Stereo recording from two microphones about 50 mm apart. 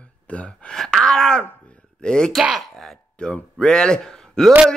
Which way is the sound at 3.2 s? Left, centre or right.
Centre.